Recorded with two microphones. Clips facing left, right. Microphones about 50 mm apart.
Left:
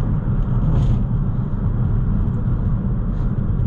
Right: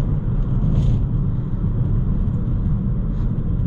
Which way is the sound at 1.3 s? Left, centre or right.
Left.